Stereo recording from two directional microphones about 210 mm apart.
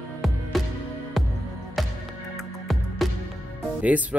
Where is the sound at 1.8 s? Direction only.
Centre (ahead or behind).